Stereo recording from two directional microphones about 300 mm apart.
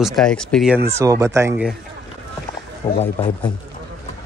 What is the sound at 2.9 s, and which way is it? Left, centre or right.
Speech, centre.